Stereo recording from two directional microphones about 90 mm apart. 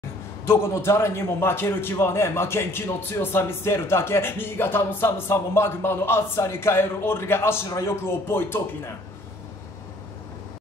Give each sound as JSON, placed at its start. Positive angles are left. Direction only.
{"t": 0.5, "sound": "a man's voice", "side_deg": 30}